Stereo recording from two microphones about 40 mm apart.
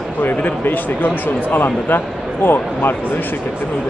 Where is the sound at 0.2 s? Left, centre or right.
Left.